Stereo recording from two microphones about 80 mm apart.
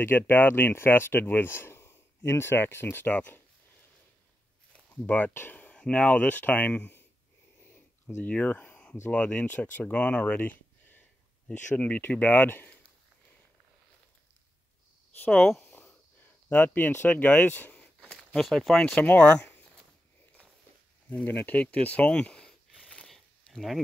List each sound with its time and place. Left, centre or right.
0.0 s speech: left
4.7 s speech: centre
8.2 s speech: centre
15.3 s speech: centre
16.4 s speech: left
17.1 s a sound: centre
18.1 s speech: centre
21.1 s speech: left
22.8 s a sound: centre